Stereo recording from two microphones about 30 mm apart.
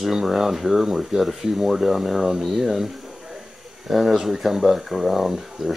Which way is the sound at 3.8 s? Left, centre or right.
Centre.